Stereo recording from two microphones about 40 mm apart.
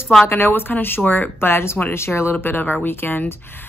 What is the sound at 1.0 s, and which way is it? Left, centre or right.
Speech, left.